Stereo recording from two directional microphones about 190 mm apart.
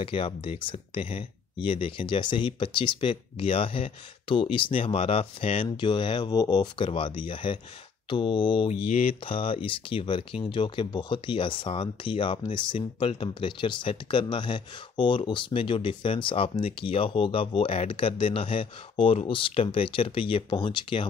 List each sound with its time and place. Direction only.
0.0 s speech: 30° left (ahead or behind)